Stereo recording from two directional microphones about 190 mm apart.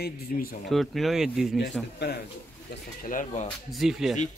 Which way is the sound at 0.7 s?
Centre (ahead or behind).